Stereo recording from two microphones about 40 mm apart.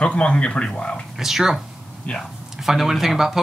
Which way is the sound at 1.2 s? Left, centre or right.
Centre.